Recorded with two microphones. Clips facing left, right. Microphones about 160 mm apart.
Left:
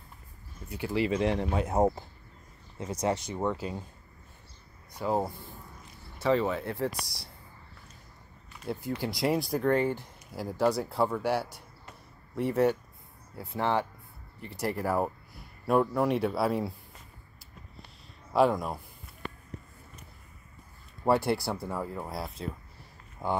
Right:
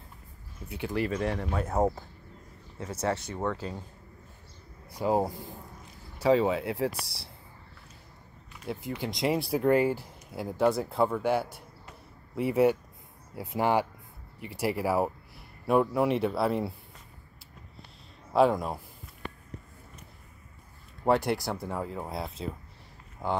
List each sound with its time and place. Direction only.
0.7 s speech: 5° left (ahead or behind)
4.9 s speech: 10° right (ahead or behind)
6.9 s speech: 30° right (ahead or behind)
8.6 s speech: 5° left (ahead or behind)
18.3 s speech: centre (ahead or behind)
21.2 s speech: 15° right (ahead or behind)
22.1 s speech: centre (ahead or behind)